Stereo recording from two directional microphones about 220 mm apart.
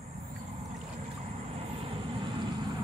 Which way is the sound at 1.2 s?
30° right (ahead or behind).